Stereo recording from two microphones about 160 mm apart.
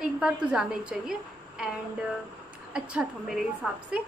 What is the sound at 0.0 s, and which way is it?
A woman's voice, 5° right (ahead or behind).